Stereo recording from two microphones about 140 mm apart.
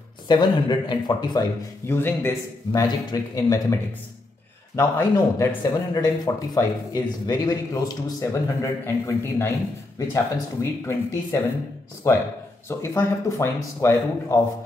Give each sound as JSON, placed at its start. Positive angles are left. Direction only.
{"t": 0.3, "sound": "speech", "side_deg": 35}
{"t": 1.9, "sound": "a man's voice", "side_deg": 15}
{"t": 12.1, "sound": "speech", "side_deg": 20}